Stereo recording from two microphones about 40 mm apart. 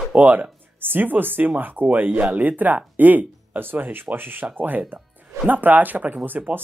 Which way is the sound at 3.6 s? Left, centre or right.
Right.